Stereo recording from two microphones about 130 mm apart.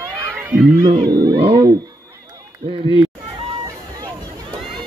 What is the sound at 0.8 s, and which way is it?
Speech, 35° right (ahead or behind).